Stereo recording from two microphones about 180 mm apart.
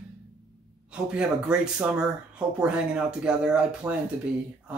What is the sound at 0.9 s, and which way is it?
Speech, 5° right (ahead or behind).